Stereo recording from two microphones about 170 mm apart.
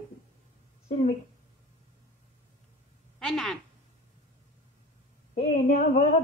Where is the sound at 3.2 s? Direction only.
Centre (ahead or behind).